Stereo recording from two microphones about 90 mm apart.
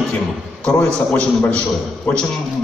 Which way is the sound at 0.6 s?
10° left (ahead or behind).